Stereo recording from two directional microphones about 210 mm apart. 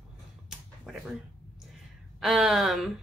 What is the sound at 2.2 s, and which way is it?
Speech, centre (ahead or behind).